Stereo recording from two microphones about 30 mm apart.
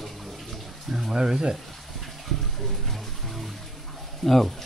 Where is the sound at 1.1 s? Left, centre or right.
Right.